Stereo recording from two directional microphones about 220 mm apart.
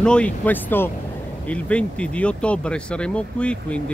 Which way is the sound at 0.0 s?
5° left (ahead or behind).